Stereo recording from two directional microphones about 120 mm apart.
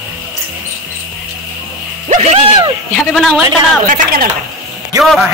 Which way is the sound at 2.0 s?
75° right (ahead or behind).